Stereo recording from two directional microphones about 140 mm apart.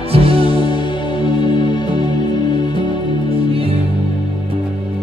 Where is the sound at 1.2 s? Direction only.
35° left (ahead or behind).